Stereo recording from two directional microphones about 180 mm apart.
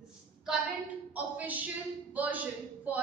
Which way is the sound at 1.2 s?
10° right (ahead or behind).